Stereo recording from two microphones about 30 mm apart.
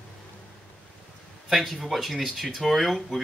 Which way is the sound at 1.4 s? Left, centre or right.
Centre.